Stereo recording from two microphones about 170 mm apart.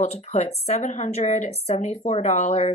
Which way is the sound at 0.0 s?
40° left (ahead or behind).